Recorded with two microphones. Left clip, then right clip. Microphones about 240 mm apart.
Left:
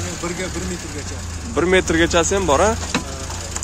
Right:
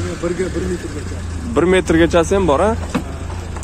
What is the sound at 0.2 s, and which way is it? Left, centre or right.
Speech, left.